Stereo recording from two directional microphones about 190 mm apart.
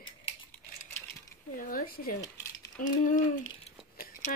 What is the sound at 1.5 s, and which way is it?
Speech, 50° left (ahead or behind).